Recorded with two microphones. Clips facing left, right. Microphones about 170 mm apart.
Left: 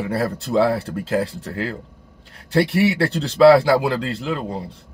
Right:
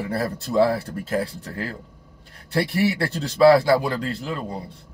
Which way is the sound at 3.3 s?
75° left (ahead or behind).